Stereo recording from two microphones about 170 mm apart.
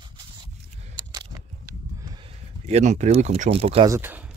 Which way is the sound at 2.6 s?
40° right (ahead or behind).